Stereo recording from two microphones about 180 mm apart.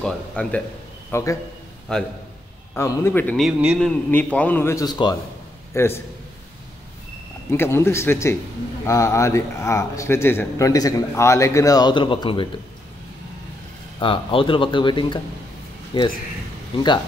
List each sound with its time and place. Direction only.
0.0 s speech: 5° left (ahead or behind)
1.9 s a man's voice: 5° left (ahead or behind)
2.7 s speech: 15° left (ahead or behind)
3.3 s speech: centre (ahead or behind)
7.5 s speech: 15° left (ahead or behind)
13.9 s speech: 30° left (ahead or behind)